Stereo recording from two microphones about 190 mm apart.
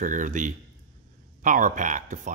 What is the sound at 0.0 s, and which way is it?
Speech, 40° right (ahead or behind).